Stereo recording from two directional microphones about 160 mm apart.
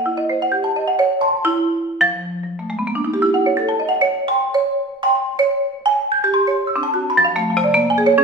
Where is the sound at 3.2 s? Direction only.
30° right (ahead or behind).